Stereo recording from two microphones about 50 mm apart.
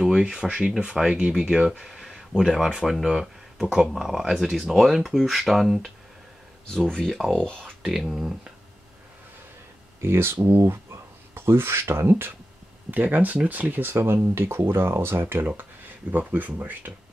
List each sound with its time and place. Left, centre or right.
0.0 s speech: centre
6.7 s speech: centre
7.8 s speech: centre
9.9 s speech: right
11.3 s speech: right
12.9 s speech: right